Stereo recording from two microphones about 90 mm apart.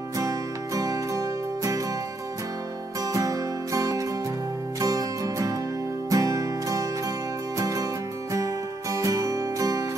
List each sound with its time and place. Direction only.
0.2 s music: 40° right (ahead or behind)
3.1 s music: 40° right (ahead or behind)
8.9 s music: 40° right (ahead or behind)